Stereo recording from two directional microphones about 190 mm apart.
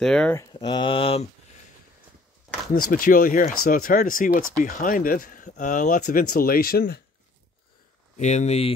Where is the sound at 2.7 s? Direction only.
50° left (ahead or behind).